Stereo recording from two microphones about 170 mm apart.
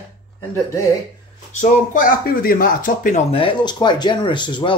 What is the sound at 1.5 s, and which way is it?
Speech, 45° left (ahead or behind).